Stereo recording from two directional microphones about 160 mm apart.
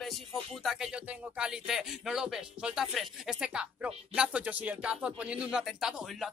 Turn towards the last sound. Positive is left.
turn(degrees=-5)  # may be behind; listen again after turning